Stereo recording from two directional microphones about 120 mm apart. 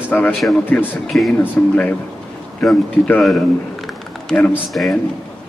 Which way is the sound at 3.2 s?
Centre (ahead or behind).